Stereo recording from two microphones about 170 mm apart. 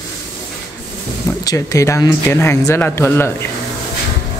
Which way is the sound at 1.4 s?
20° left (ahead or behind).